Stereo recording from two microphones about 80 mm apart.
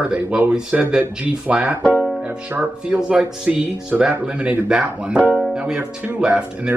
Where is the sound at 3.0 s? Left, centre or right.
Centre.